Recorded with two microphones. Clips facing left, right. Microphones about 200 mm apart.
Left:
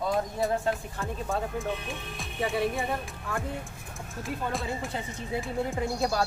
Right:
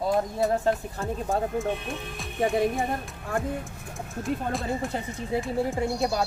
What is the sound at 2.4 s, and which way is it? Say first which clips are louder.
Music: right 4 dB; 45° right (ahead or behind).